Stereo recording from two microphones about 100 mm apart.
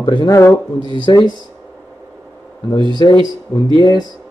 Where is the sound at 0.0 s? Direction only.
50° left (ahead or behind).